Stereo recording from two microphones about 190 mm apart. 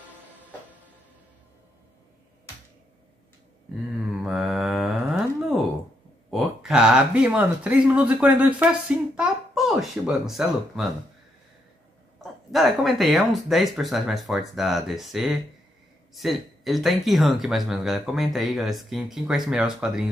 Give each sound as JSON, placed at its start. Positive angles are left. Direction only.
{"t": 4.2, "sound": "mantra", "side_deg": -5}
{"t": 6.3, "sound": "speech", "side_deg": -5}
{"t": 12.2, "sound": "speech", "side_deg": 0}